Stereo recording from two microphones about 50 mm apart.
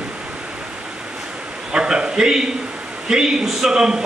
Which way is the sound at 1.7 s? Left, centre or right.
Centre.